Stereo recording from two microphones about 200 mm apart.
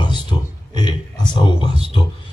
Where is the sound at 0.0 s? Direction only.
20° left (ahead or behind).